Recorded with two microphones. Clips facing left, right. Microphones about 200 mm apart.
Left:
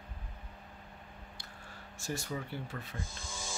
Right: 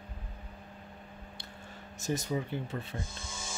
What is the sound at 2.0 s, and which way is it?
Speech, 20° right (ahead or behind).